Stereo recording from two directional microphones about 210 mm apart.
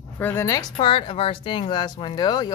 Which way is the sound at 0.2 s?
10° left (ahead or behind).